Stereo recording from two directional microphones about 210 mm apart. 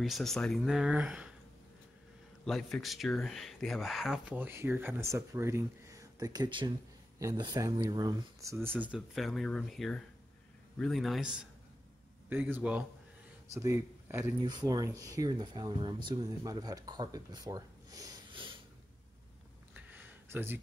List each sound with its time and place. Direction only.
0.0 s speech: centre (ahead or behind)
2.4 s speech: centre (ahead or behind); by 18.5 s 20° right (ahead or behind)
19.7 s a sound: 10° right (ahead or behind)